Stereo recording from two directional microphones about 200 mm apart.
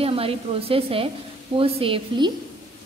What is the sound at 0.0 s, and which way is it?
A woman's voice, 30° right (ahead or behind).